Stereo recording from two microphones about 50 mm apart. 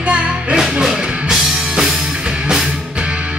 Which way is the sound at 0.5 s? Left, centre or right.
Centre.